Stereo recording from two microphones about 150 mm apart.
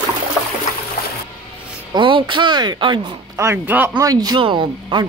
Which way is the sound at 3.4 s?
15° right (ahead or behind).